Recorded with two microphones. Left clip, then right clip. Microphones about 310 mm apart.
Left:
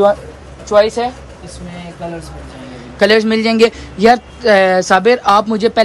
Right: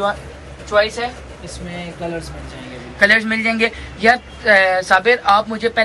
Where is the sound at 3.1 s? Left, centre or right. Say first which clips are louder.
Left 5 dB; centre.